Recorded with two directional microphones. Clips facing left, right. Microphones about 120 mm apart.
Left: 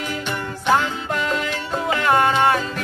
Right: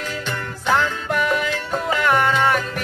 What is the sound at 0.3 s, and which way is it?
Music, 20° left (ahead or behind).